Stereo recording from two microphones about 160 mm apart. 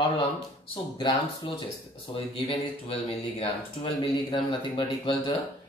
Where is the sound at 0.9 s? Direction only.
25° left (ahead or behind).